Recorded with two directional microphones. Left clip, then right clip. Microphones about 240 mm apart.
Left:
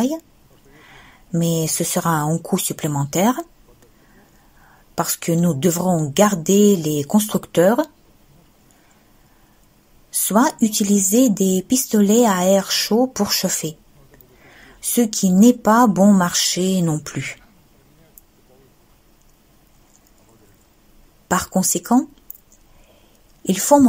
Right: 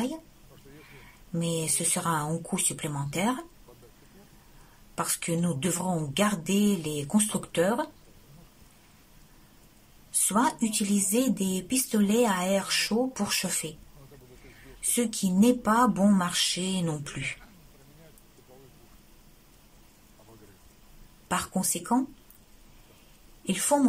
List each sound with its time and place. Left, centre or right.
1.3 s speech: left
4.9 s speech: left
10.2 s speech: left
15.0 s speech: left
21.3 s speech: left
23.4 s speech: left